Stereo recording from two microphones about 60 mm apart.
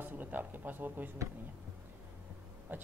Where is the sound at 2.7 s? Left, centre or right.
Right.